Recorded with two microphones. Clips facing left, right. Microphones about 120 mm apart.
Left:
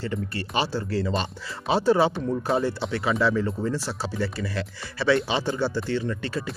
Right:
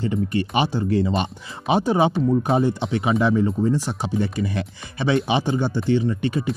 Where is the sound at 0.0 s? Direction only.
15° right (ahead or behind).